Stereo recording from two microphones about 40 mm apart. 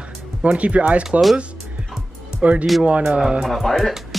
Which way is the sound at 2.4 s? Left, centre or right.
Right.